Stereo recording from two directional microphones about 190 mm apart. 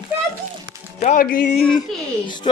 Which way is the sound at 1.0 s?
45° left (ahead or behind).